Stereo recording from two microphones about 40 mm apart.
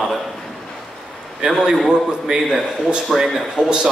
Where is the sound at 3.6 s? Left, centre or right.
Right.